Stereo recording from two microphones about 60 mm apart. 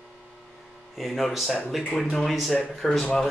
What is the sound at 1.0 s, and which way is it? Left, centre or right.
Speech, centre.